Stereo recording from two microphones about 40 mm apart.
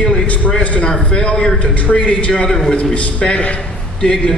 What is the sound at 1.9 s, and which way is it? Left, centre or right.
Speech, left.